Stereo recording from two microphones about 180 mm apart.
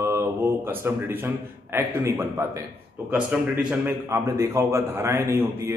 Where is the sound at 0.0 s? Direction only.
15° right (ahead or behind).